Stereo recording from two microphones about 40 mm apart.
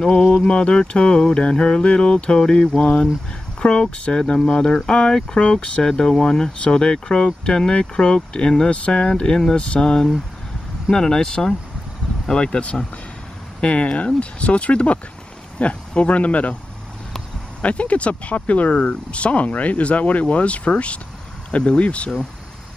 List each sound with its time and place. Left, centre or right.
0.0 s speech: centre
0.4 s a sound: left
3.5 s speech: left
5.4 s speech: left
5.8 s speech: centre
6.6 s a sound: left
10.9 s speech: centre
12.3 s a sound: left
13.6 s speech: left
17.6 s speech: left